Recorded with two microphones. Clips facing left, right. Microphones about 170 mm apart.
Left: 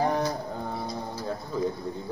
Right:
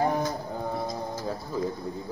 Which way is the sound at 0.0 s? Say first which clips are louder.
Even; centre (ahead or behind).